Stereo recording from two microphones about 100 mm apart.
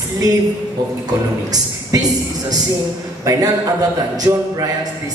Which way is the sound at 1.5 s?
40° right (ahead or behind).